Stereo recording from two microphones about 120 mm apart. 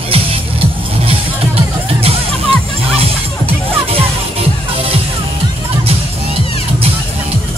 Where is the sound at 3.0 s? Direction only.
55° right (ahead or behind).